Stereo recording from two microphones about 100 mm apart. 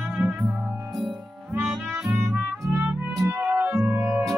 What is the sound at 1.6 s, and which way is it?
Music, 10° right (ahead or behind).